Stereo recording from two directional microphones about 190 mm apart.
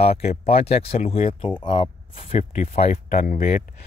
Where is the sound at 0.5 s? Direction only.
30° left (ahead or behind).